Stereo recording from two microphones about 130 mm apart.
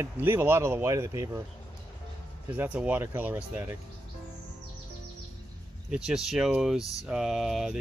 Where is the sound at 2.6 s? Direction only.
10° right (ahead or behind).